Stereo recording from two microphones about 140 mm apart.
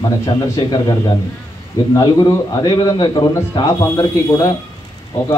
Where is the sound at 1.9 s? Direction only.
30° left (ahead or behind).